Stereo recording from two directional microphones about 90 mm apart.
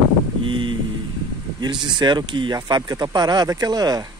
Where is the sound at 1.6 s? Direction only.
55° right (ahead or behind).